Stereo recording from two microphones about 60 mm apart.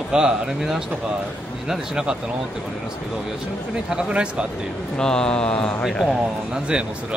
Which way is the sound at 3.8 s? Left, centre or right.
Centre.